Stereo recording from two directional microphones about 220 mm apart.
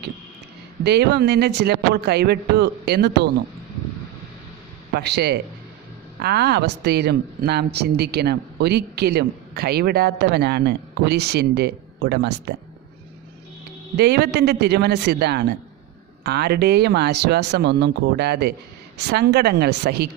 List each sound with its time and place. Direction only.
0.8 s a woman's voice: 50° right (ahead or behind)
4.9 s a woman's voice: 50° right (ahead or behind)
13.9 s a woman's voice: 50° right (ahead or behind)